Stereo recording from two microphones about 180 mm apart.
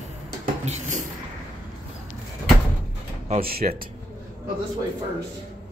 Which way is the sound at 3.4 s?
55° right (ahead or behind).